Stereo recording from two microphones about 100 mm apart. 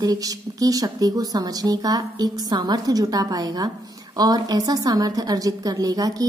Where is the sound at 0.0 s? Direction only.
35° right (ahead or behind).